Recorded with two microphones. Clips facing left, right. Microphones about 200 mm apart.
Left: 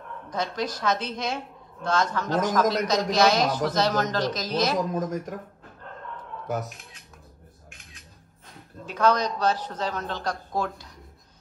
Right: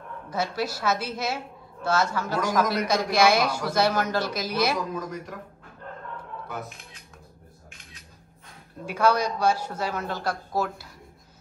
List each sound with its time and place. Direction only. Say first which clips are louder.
0.3 s a woman's voice: right 1 dB; 5° right (ahead or behind)
4.9 s speech: left 5 dB; 45° left (ahead or behind)
6.4 s speech: left 9 dB; 45° left (ahead or behind)
8.8 s a woman's voice: even; 10° right (ahead or behind)